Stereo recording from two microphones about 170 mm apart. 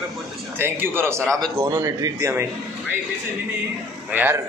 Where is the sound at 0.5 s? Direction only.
10° right (ahead or behind).